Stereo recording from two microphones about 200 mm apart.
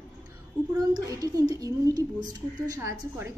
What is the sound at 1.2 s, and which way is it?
A woman's voice, 20° right (ahead or behind).